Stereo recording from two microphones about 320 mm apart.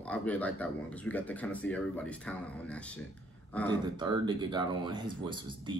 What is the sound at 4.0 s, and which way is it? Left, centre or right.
Speech, centre.